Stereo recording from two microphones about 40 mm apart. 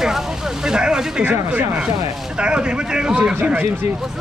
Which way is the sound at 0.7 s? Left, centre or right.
Centre.